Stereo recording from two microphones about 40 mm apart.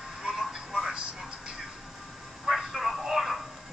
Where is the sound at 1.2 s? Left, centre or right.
Centre.